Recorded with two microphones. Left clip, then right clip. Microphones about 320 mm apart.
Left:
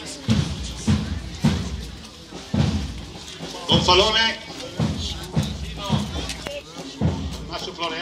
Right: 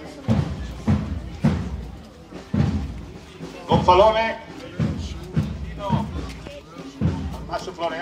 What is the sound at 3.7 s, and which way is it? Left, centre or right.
Speech, centre.